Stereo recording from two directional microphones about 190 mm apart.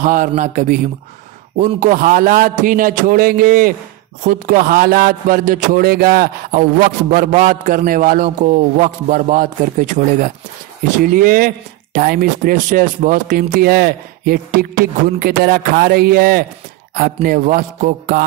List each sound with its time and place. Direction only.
0.0 s a man's voice: 45° right (ahead or behind)